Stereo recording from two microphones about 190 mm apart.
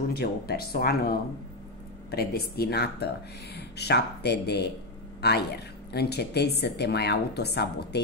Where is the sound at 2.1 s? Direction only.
55° left (ahead or behind).